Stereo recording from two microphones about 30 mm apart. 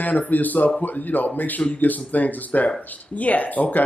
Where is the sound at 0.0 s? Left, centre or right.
Left.